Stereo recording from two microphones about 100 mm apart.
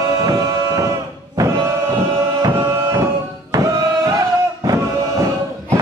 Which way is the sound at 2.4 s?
30° right (ahead or behind).